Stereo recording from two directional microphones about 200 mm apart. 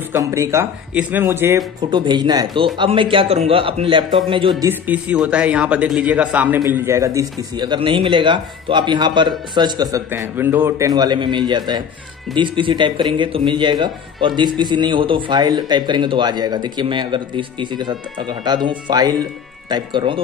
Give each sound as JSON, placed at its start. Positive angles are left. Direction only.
{"t": 0.1, "sound": "speech", "side_deg": -15}
{"t": 1.8, "sound": "speech", "side_deg": -20}
{"t": 4.6, "sound": "speech", "side_deg": -5}